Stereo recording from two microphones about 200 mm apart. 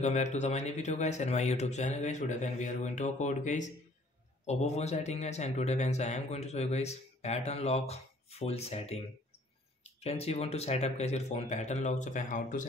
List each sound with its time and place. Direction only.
0.0 s a man's voice: 35° left (ahead or behind)